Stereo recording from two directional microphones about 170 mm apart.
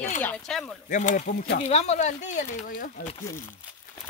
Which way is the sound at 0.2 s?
5° left (ahead or behind).